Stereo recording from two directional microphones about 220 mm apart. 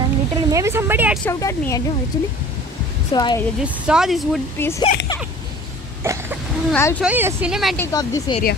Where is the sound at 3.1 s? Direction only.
20° left (ahead or behind).